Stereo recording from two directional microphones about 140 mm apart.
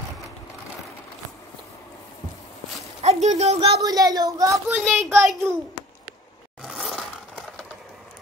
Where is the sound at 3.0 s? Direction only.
55° right (ahead or behind).